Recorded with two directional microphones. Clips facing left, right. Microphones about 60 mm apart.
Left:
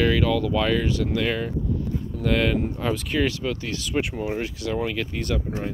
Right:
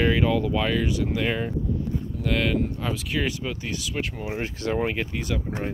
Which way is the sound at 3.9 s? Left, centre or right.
Centre.